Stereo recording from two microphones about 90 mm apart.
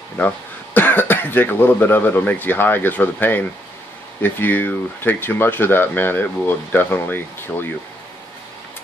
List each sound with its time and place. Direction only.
0.2 s speech: 20° left (ahead or behind)